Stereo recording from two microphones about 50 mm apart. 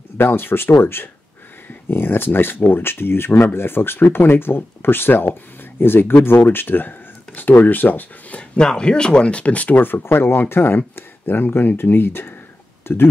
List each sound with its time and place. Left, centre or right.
0.2 s speech: left
8.4 s speech: centre; by 13.1 s left